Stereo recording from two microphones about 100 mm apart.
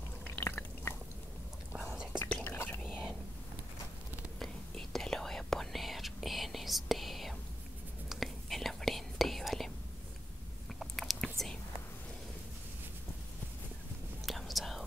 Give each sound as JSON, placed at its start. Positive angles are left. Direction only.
{"t": 0.4, "sound": "drip", "side_deg": 20}
{"t": 2.4, "sound": "whispering", "side_deg": 20}
{"t": 2.8, "sound": "a sound", "side_deg": -5}
{"t": 4.4, "sound": "whispering", "side_deg": 5}
{"t": 10.8, "sound": "chewing", "side_deg": 0}
{"t": 14.2, "sound": "whispering", "side_deg": 0}